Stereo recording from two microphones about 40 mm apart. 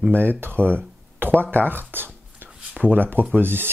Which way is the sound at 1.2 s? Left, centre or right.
Right.